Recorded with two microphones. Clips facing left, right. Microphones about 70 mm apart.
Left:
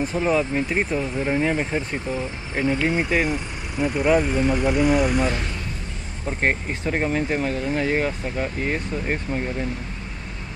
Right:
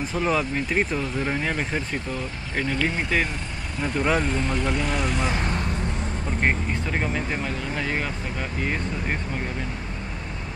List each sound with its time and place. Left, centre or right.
0.2 s speech: centre
6.7 s speech: left
7.4 s speech: left